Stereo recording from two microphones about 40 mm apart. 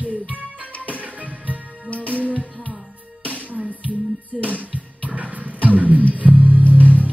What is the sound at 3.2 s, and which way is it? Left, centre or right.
Music, right.